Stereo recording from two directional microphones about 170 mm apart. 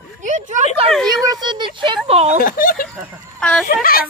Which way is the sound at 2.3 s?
55° left (ahead or behind).